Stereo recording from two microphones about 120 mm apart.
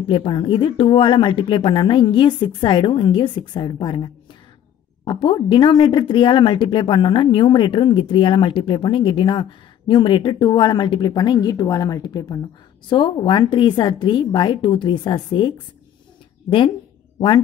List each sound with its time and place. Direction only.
0.1 s a woman's voice: 45° left (ahead or behind)